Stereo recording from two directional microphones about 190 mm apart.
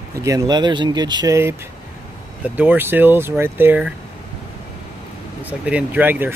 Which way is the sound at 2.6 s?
10° right (ahead or behind).